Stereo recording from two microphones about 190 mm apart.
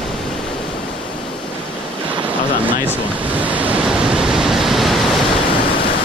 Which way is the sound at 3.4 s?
10° right (ahead or behind).